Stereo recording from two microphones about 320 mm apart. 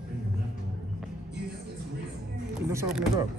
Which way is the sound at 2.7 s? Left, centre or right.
Centre.